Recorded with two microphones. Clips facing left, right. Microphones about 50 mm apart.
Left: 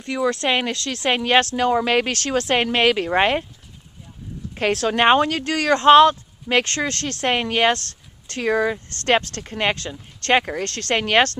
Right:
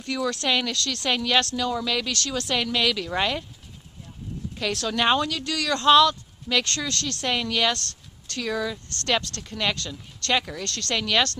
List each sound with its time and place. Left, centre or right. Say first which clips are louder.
0.0 s speech: left 5 dB; left
4.6 s speech: left 7 dB; left